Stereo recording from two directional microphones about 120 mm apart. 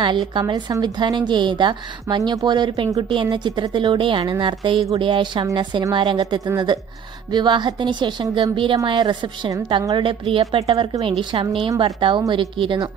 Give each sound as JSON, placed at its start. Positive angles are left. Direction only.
{"t": 0.3, "sound": "a woman's voice", "side_deg": -40}